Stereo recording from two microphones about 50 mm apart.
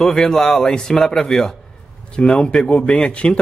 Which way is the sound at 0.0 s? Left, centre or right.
Centre.